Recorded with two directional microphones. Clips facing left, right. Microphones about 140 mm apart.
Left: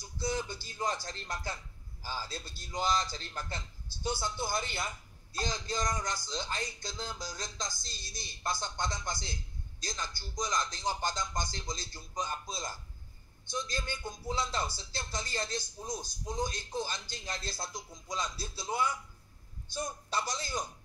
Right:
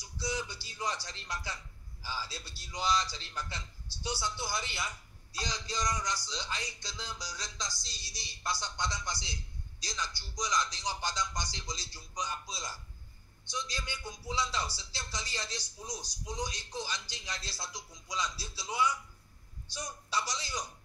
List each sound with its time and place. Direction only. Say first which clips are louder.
0.0 s a man's voice: left 2 dB; 50° left (ahead or behind)